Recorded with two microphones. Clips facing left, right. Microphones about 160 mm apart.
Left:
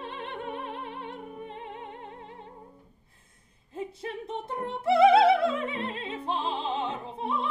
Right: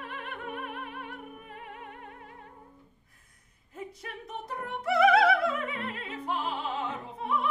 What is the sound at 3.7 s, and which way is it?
Opera, 30° left (ahead or behind).